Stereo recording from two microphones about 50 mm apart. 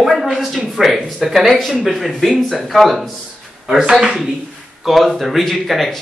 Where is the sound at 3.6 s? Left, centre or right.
Centre.